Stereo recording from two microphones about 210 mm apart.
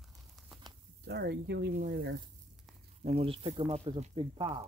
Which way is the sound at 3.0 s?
30° right (ahead or behind).